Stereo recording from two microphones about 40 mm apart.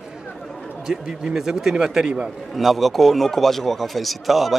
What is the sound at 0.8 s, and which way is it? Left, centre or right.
Speech, centre.